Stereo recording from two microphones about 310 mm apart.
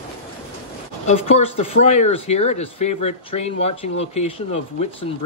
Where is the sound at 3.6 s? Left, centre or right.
Left.